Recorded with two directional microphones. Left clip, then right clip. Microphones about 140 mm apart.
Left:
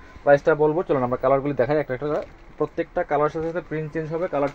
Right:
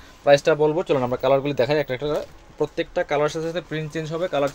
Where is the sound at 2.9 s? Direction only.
45° right (ahead or behind).